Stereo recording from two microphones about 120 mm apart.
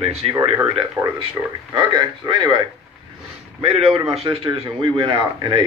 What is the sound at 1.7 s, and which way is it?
Speech, 40° right (ahead or behind).